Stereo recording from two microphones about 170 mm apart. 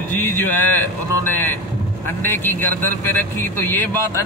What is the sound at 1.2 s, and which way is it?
A man's voice, 15° left (ahead or behind).